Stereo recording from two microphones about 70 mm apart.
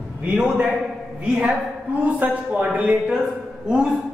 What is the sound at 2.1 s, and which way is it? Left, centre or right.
A man's voice, right.